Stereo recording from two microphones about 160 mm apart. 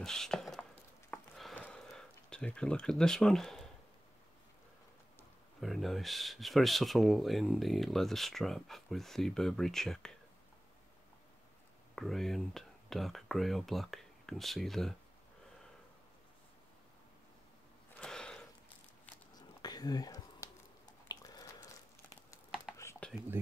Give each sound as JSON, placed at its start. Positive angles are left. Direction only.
{"t": 0.0, "sound": "chopping", "side_deg": 5}
{"t": 1.1, "sound": "sniff", "side_deg": 5}
{"t": 5.6, "sound": "speech", "side_deg": 0}
{"t": 11.9, "sound": "speech", "side_deg": 0}
{"t": 17.9, "sound": "a sound", "side_deg": 5}
{"t": 19.3, "sound": "whispering", "side_deg": 25}
{"t": 20.8, "sound": "biting", "side_deg": 25}
{"t": 22.8, "sound": "computer keyboard", "side_deg": 15}